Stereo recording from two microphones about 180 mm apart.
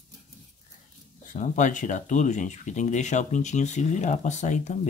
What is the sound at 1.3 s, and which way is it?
Speech, 45° left (ahead or behind).